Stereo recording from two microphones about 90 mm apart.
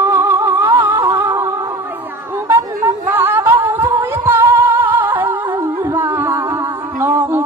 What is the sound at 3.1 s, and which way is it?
Humming, 25° right (ahead or behind).